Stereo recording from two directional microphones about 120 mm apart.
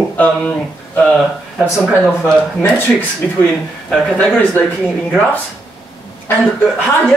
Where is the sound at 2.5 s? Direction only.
15° left (ahead or behind).